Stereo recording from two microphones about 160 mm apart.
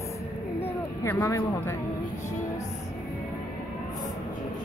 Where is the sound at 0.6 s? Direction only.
15° left (ahead or behind).